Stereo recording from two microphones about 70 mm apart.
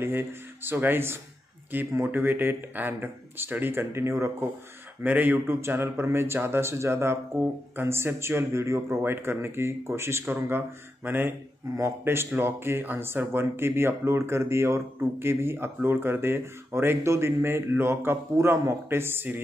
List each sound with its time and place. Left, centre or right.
0.0 s speech: right
5.0 s speech: right
5.6 s speech: right